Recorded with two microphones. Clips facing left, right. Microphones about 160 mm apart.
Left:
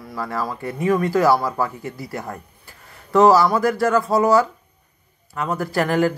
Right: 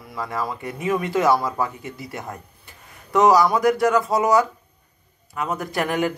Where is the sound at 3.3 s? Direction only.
15° right (ahead or behind).